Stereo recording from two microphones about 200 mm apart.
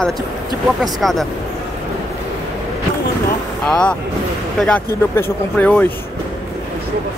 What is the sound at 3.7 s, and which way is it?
Speech, 5° left (ahead or behind).